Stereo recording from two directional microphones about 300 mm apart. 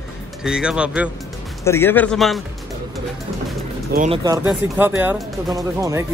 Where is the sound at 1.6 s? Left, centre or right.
Centre.